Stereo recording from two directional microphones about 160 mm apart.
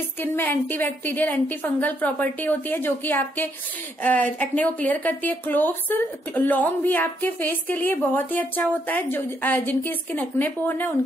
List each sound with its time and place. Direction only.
0.2 s speech: 10° left (ahead or behind)